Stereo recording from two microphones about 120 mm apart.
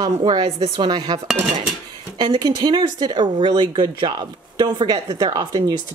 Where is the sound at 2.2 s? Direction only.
40° right (ahead or behind).